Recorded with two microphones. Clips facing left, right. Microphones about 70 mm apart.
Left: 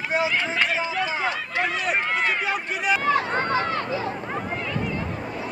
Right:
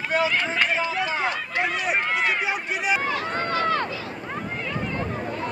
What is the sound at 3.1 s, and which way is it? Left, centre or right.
Speech, left.